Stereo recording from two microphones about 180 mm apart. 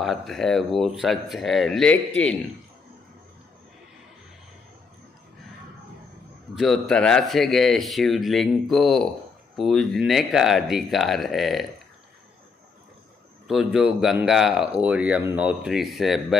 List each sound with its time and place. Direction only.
0.0 s speech: centre (ahead or behind)
6.5 s speech: centre (ahead or behind)
13.5 s speech: centre (ahead or behind)